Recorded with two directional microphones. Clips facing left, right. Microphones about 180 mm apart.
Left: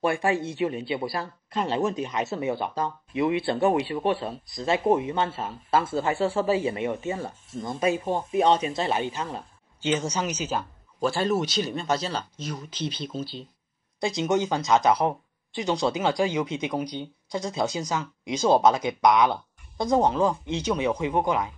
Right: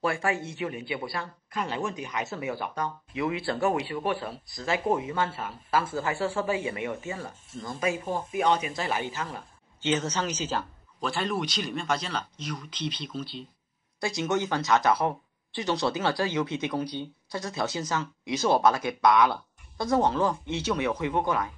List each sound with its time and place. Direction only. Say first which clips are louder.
0.0 s speech: left 4 dB; 25° left (ahead or behind)
11.1 s speech: left 5 dB; 40° left (ahead or behind)
13.9 s speech: left 3 dB; 20° left (ahead or behind)